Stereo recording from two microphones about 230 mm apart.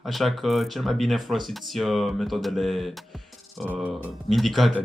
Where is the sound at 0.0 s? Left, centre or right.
Centre.